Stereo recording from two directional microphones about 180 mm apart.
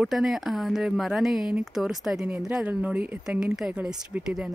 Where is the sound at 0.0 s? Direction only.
Centre (ahead or behind).